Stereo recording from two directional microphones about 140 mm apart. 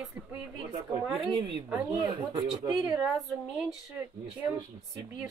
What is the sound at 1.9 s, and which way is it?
Speech, 30° right (ahead or behind).